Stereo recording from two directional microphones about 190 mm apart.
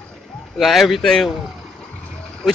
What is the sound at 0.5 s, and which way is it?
Speech, centre (ahead or behind).